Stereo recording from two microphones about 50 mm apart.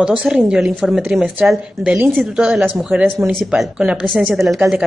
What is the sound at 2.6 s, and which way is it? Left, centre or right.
Speech, right.